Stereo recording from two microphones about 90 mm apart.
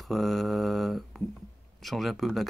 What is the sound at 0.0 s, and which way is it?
Mantra, centre (ahead or behind).